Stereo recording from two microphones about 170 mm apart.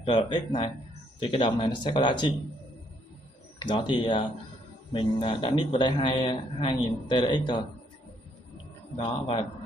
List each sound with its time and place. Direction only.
0.0 s a man's voice: 30° left (ahead or behind)
3.5 s a man's voice: 25° left (ahead or behind)
8.9 s a man's voice: 30° left (ahead or behind)